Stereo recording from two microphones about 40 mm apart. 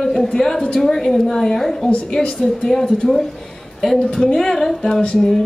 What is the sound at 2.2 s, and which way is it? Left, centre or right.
A woman's voice, left.